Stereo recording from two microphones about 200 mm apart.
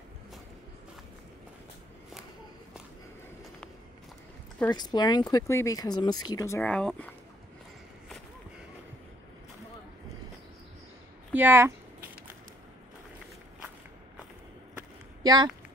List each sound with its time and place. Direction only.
4.6 s speech: 20° left (ahead or behind); by 7.1 s 5° left (ahead or behind)
11.3 s speech: 10° right (ahead or behind)
15.2 s speech: 20° right (ahead or behind)